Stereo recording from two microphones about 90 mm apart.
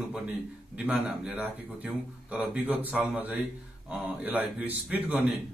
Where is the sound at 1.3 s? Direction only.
20° right (ahead or behind).